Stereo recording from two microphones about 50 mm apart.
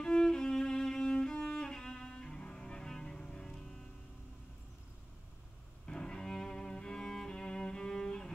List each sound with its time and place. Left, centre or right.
0.0 s music: centre
5.9 s cello: centre